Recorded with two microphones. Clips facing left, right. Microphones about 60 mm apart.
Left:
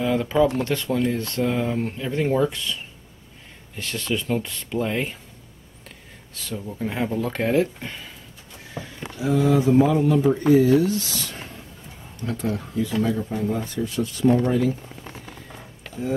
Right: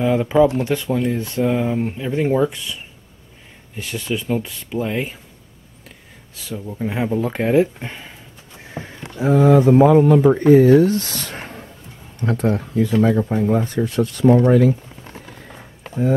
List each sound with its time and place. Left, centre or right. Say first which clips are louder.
0.0 s speech: right 5 dB; centre
8.7 s speech: right 4 dB; right